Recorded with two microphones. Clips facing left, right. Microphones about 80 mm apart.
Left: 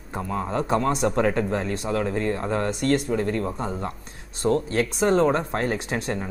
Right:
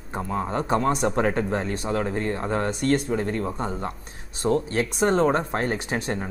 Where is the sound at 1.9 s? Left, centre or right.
Centre.